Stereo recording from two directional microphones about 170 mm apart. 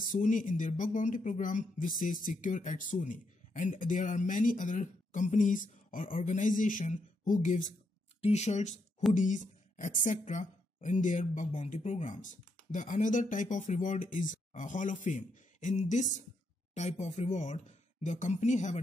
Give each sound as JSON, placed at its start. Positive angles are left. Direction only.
{"t": 0.1, "sound": "speech", "side_deg": 50}